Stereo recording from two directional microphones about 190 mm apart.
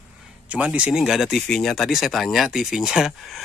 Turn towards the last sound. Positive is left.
turn(degrees=0)  # may be behind; listen again after turning